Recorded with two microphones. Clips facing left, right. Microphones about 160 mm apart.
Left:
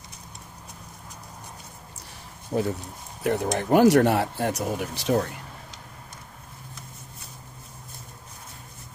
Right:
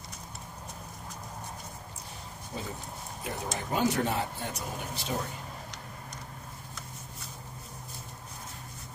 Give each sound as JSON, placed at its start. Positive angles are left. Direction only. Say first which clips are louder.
{"t": 2.5, "sound": "speech", "louder": "left 14 dB", "side_deg": 55}
{"t": 3.3, "sound": "speech", "louder": "left 12 dB", "side_deg": 70}